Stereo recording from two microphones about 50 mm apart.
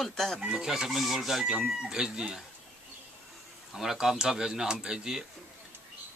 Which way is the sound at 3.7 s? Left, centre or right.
Centre.